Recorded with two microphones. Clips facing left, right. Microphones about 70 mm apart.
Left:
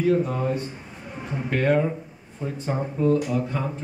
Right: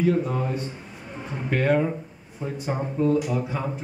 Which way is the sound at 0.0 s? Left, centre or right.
Centre.